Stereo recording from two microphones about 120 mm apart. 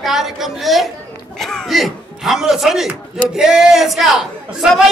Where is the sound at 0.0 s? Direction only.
Centre (ahead or behind).